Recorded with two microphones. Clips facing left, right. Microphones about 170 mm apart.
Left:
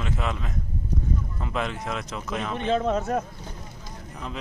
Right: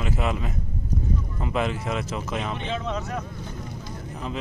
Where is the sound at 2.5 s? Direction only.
45° left (ahead or behind).